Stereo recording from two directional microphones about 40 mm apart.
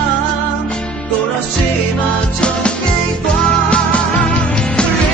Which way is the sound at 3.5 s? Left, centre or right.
Left.